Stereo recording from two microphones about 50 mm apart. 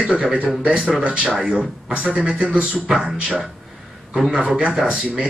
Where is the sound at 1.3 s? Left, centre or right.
Centre.